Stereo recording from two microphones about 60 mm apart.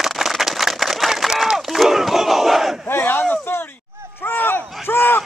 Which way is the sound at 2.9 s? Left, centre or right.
Left.